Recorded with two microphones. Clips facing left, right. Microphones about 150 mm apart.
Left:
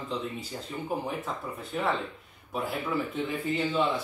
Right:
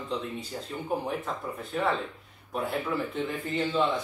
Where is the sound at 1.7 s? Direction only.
Centre (ahead or behind).